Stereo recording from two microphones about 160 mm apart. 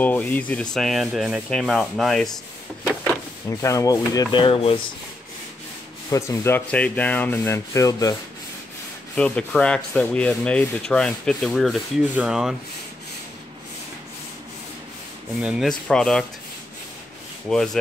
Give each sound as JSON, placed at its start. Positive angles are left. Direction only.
{"t": 0.0, "sound": "rub", "side_deg": 10}
{"t": 0.7, "sound": "speech", "side_deg": 0}
{"t": 3.0, "sound": "speech", "side_deg": 15}
{"t": 6.0, "sound": "rub", "side_deg": 20}
{"t": 9.1, "sound": "speech", "side_deg": 5}
{"t": 15.4, "sound": "speech", "side_deg": -5}
{"t": 15.9, "sound": "speech", "side_deg": 5}
{"t": 17.5, "sound": "speech", "side_deg": 5}